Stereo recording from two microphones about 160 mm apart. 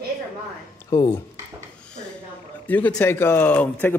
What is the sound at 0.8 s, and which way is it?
Speech, 20° left (ahead or behind).